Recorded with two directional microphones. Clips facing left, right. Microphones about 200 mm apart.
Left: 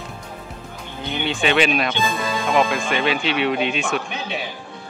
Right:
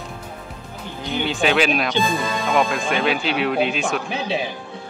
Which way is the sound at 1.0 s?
Centre (ahead or behind).